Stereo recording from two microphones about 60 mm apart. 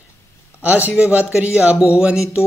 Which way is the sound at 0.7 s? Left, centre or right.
Right.